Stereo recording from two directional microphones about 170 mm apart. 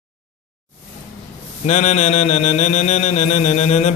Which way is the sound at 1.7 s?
45° left (ahead or behind).